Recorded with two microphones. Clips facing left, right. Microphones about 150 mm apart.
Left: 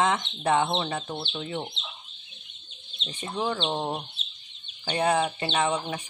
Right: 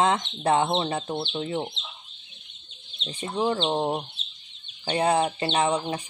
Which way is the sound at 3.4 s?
30° right (ahead or behind).